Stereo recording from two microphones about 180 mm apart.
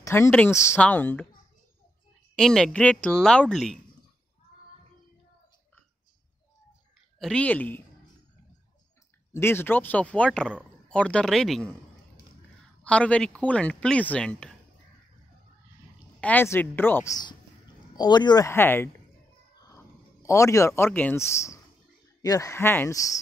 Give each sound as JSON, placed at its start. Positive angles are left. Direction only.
{"t": 0.0, "sound": "speech", "side_deg": 15}
{"t": 2.3, "sound": "a woman's voice", "side_deg": 5}
{"t": 7.2, "sound": "speech", "side_deg": 5}
{"t": 9.3, "sound": "a woman's voice", "side_deg": 15}
{"t": 12.8, "sound": "speech", "side_deg": 5}
{"t": 16.2, "sound": "speech", "side_deg": 10}